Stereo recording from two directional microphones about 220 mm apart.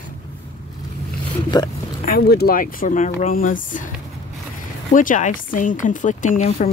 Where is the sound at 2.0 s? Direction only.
45° left (ahead or behind).